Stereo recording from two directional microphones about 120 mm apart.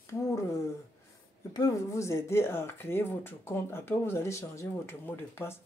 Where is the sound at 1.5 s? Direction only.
30° left (ahead or behind).